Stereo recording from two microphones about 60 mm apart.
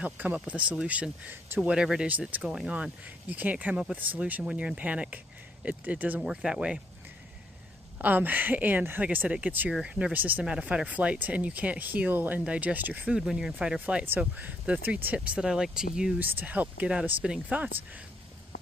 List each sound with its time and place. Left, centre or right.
0.0 s speech: right
6.2 s speech: centre
8.0 s speech: right
9.7 s speech: centre
10.1 s speech: right
10.4 s speech: centre
13.1 s speech: centre
13.7 s speech: right
16.2 s speech: right; by 17.4 s centre